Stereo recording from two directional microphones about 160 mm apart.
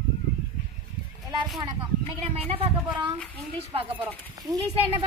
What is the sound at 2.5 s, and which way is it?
Speech, 35° right (ahead or behind).